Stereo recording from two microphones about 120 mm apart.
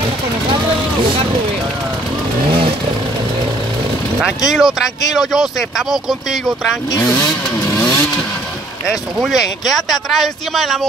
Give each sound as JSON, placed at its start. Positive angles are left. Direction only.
{"t": 4.5, "sound": "speech", "side_deg": -5}
{"t": 7.1, "sound": "vehicle", "side_deg": 25}
{"t": 8.8, "sound": "speech", "side_deg": -5}